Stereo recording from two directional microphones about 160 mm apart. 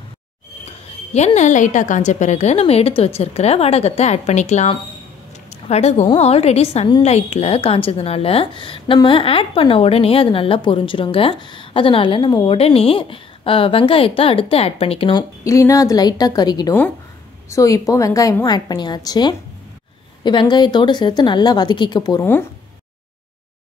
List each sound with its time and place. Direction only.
0.7 s a woman's voice: 45° left (ahead or behind)
15.4 s speech: 20° left (ahead or behind)